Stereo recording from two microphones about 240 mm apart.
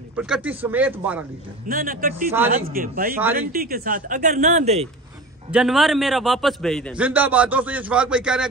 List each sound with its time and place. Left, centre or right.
0.1 s speech: centre
1.7 s speech: right
5.5 s a man's voice: centre